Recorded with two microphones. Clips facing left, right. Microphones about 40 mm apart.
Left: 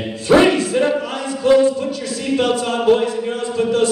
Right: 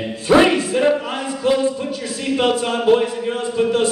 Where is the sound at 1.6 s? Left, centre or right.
Right.